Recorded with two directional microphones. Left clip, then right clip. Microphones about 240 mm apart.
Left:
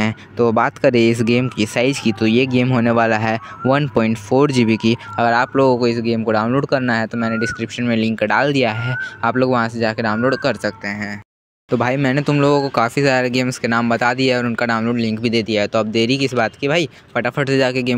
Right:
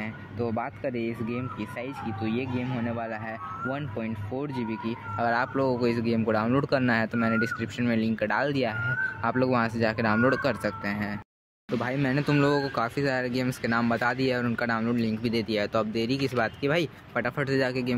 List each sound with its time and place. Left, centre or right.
0.0 s speech: left
5.1 s speech: left